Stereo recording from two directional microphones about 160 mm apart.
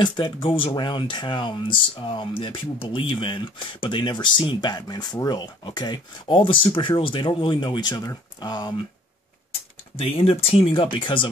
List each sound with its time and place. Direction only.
0.0 s speech: 30° left (ahead or behind)
9.9 s speech: 35° left (ahead or behind)